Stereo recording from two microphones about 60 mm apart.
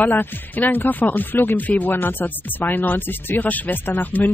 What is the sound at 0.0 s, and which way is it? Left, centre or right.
Speech, left.